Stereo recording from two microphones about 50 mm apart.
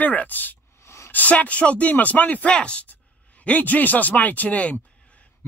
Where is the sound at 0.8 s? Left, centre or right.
Left.